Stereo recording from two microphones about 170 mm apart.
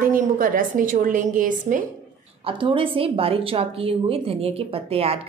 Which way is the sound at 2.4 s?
30° right (ahead or behind).